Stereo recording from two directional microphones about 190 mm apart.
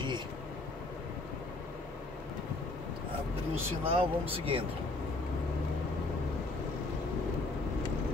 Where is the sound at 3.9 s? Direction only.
25° right (ahead or behind).